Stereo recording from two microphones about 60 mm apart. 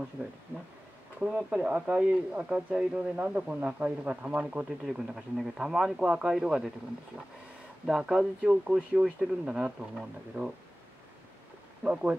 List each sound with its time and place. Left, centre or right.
0.2 s speech: centre
7.8 s speech: centre
11.8 s speech: centre